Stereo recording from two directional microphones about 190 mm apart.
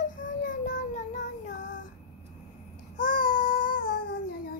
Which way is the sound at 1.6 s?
75° left (ahead or behind).